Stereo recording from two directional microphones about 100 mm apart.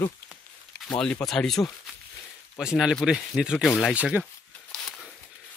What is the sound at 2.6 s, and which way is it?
Speech, 5° right (ahead or behind).